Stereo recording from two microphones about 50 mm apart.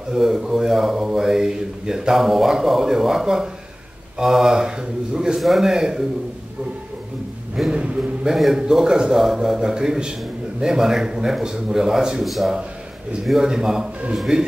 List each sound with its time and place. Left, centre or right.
0.1 s speech: centre
7.7 s a man's voice: right
8.3 s speech: centre